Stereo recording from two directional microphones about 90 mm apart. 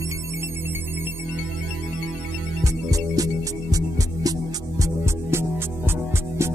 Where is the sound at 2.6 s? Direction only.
35° right (ahead or behind).